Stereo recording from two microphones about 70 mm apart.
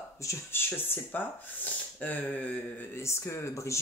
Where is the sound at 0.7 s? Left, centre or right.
Left.